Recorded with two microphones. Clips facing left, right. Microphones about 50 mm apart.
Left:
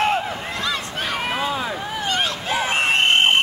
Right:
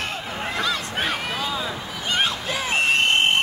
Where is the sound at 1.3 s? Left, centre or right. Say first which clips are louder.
Left 3 dB; left.